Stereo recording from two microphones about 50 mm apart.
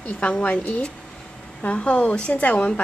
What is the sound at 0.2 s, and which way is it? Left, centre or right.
Speech, left.